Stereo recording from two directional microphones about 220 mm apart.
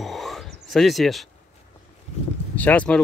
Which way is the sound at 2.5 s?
5° left (ahead or behind).